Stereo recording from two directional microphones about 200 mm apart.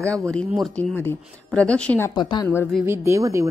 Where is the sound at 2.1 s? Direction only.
20° left (ahead or behind).